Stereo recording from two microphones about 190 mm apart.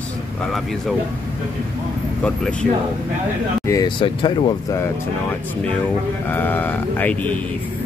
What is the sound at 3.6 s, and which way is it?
Speech, 20° left (ahead or behind).